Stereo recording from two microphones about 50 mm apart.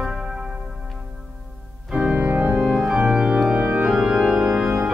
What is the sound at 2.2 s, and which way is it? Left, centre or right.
Organ, right.